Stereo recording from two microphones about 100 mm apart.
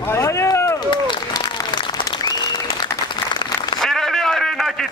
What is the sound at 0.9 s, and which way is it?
Applause, 50° left (ahead or behind).